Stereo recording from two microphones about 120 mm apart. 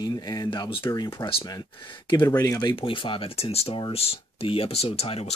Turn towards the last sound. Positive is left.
turn(degrees=60)  # may be behind; listen again after turning